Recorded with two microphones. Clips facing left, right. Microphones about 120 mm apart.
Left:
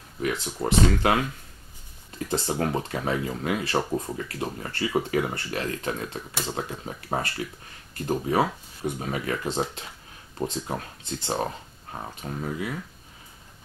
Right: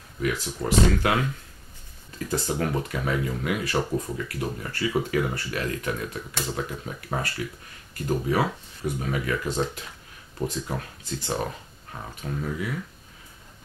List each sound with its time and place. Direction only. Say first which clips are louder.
0.2 s speech: even; 25° left (ahead or behind)